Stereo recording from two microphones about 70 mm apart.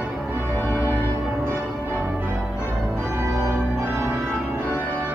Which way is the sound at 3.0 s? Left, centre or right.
Right.